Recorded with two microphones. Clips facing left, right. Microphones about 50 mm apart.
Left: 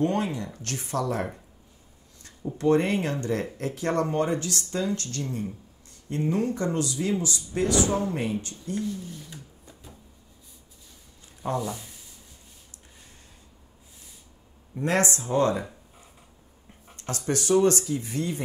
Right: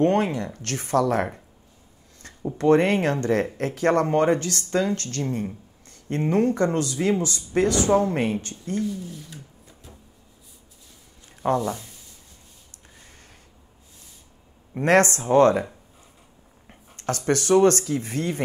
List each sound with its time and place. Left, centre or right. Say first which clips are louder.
0.0 s speech: right 5 dB; right
2.5 s speech: right 4 dB; right
8.7 s a sound: right 4 dB; centre
11.5 s speech: right 4 dB; centre
14.9 s speech: right 7 dB; right
16.6 s a sound: right 7 dB; right
17.3 s speech: right 4 dB; right